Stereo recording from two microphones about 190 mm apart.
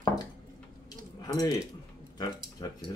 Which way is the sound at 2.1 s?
20° left (ahead or behind).